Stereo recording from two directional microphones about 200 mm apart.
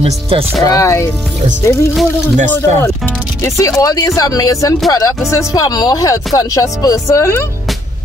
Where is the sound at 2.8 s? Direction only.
15° left (ahead or behind).